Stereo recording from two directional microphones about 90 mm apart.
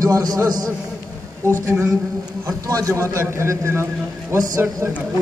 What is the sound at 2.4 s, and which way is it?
A man's voice, 40° right (ahead or behind).